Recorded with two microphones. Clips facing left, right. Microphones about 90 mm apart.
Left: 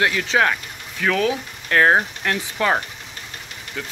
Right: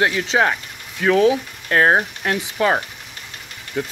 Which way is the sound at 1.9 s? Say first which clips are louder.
Right 1 dB; 5° right (ahead or behind).